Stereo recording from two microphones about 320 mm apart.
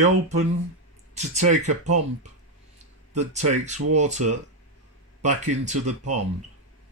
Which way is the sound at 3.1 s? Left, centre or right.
Right.